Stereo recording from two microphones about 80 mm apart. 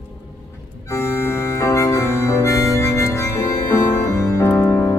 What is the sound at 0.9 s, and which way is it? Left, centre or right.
Organ, left.